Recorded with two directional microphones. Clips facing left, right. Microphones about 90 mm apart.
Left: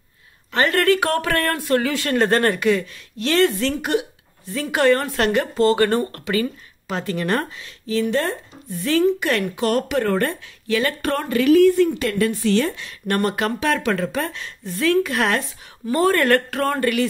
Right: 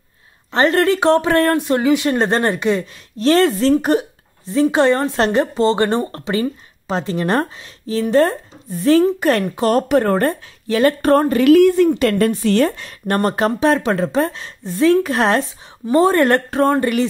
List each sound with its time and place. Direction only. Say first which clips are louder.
0.5 s a woman's voice: right 3 dB; 30° right (ahead or behind)
11.4 s a woman's voice: right 2 dB; 60° right (ahead or behind); by 17.0 s 25° right (ahead or behind)